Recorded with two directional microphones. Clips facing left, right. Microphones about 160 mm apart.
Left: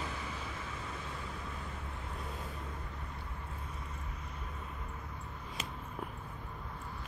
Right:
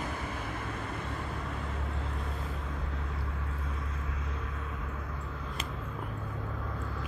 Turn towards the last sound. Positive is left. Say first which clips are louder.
# right 7 dB
turn(degrees=-90)